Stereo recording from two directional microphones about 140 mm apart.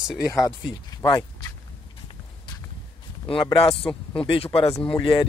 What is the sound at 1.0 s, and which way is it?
Speech, 30° left (ahead or behind).